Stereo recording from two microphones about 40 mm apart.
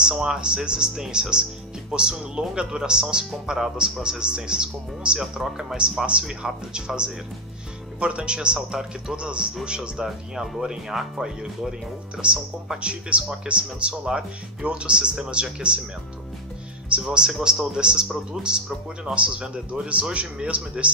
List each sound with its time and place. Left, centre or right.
0.0 s a man's voice: centre
8.0 s a man's voice: right
10.0 s speech: centre
12.2 s a man's voice: right
17.0 s a man's voice: centre; by 20.9 s right